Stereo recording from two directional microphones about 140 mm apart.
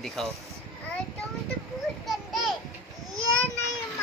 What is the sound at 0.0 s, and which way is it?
Speech, centre (ahead or behind).